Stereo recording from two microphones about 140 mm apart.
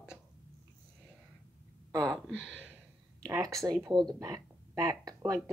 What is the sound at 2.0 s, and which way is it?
Speech, 5° left (ahead or behind).